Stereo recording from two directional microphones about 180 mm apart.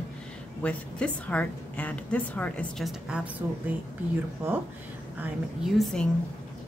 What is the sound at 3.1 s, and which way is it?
Speech, 10° right (ahead or behind).